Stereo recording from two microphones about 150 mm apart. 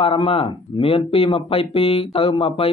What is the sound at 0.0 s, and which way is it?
Speech, 35° left (ahead or behind).